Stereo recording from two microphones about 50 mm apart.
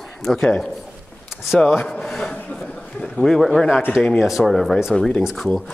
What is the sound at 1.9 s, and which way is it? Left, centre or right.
Speech, centre.